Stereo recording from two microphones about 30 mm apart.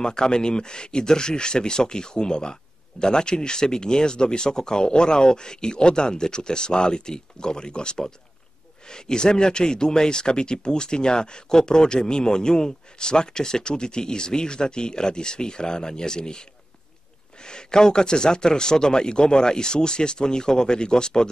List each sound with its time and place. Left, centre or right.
0.0 s speech: left